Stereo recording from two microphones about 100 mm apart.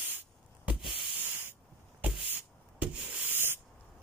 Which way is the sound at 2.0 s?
10° right (ahead or behind).